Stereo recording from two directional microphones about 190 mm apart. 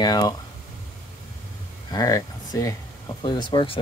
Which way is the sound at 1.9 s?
20° left (ahead or behind).